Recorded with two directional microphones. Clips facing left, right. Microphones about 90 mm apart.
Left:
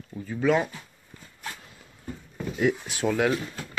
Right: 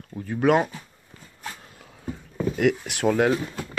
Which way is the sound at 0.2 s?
55° right (ahead or behind).